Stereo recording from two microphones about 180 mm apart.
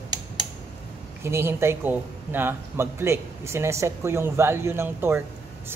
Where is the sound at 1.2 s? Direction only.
15° right (ahead or behind).